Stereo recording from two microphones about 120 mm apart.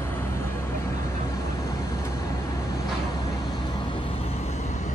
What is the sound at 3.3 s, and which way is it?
Vehicle, 30° left (ahead or behind).